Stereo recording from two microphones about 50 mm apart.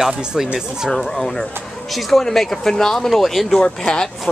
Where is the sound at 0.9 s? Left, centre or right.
Centre.